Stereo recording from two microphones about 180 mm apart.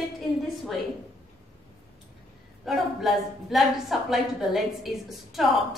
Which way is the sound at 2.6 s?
Centre (ahead or behind).